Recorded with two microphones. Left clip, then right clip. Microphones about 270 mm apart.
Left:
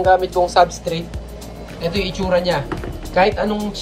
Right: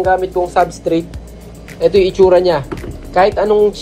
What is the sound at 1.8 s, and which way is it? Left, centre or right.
A woman's voice, centre.